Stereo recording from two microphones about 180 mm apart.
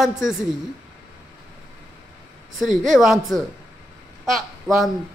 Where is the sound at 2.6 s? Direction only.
Centre (ahead or behind).